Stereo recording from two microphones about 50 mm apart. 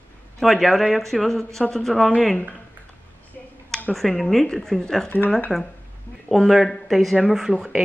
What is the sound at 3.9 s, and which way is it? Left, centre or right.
Speech, centre.